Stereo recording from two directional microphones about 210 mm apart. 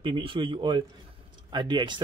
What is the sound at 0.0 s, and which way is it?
Speech, 25° right (ahead or behind).